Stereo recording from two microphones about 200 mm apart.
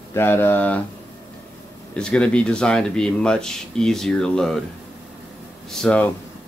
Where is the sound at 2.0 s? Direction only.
5° left (ahead or behind).